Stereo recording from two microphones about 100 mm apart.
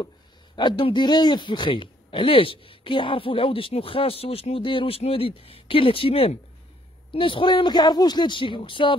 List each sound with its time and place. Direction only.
0.6 s speech: 55° left (ahead or behind)